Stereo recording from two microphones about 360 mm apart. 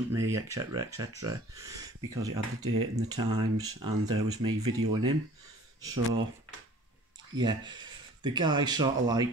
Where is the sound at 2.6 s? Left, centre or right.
Right.